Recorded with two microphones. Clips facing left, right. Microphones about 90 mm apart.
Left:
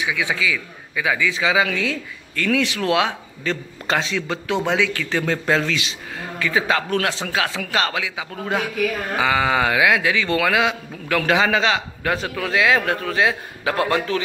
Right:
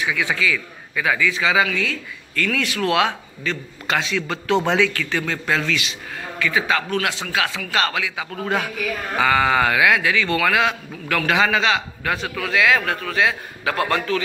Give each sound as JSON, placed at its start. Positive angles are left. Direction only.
{"t": 0.0, "sound": "a man's voice", "side_deg": 15}
{"t": 4.6, "sound": "a man's voice", "side_deg": 10}
{"t": 4.9, "sound": "a man's voice", "side_deg": 25}